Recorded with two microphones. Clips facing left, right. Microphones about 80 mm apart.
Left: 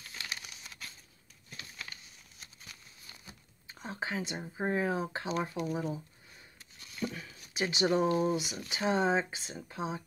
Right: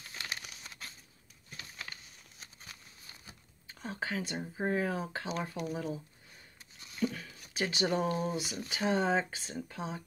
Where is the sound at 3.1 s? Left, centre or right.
Right.